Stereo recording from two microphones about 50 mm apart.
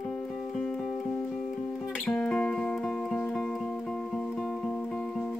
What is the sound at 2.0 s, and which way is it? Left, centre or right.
Music, centre.